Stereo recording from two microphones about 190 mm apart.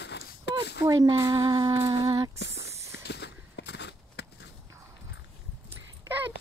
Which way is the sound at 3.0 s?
65° left (ahead or behind).